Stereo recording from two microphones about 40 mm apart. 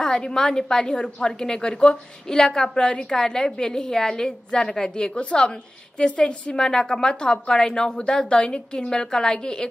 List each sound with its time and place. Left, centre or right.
0.0 s a woman's voice: centre